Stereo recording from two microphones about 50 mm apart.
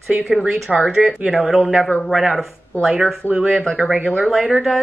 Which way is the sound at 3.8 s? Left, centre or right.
Right.